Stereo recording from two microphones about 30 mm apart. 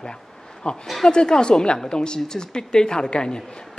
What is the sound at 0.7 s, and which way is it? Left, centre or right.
A woman's voice, left.